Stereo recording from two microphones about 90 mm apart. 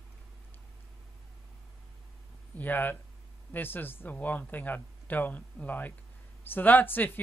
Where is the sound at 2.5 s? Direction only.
20° left (ahead or behind).